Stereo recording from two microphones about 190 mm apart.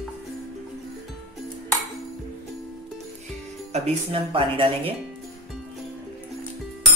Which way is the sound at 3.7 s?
35° right (ahead or behind).